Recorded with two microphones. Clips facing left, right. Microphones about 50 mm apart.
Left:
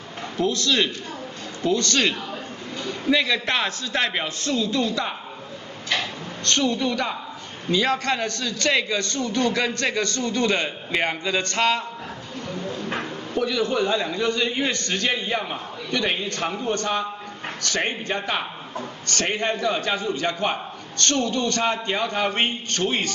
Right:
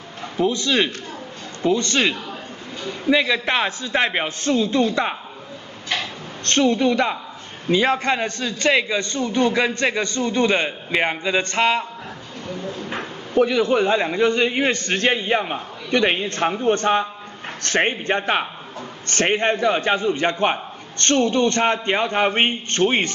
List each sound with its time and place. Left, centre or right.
0.4 s a man's voice: right
6.4 s a man's voice: right
12.6 s a sound: centre
13.3 s a man's voice: right